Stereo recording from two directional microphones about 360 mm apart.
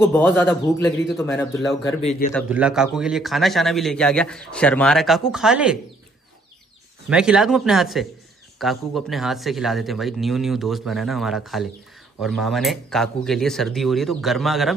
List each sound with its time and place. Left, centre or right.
0.1 s a man's voice: centre
2.0 s a man's voice: centre
2.3 s a man's voice: centre
7.1 s a man's voice: centre